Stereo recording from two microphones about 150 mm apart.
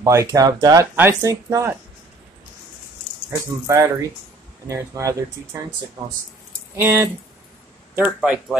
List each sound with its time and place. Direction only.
0.0 s speech: 20° right (ahead or behind)
3.3 s speech: 20° right (ahead or behind)
6.0 s speech: 30° right (ahead or behind)
6.8 s speech: 15° right (ahead or behind)